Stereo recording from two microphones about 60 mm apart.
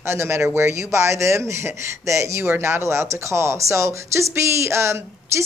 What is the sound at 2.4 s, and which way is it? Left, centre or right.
Speech, right.